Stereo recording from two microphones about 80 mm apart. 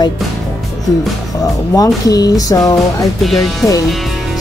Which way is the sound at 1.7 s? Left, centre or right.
Left.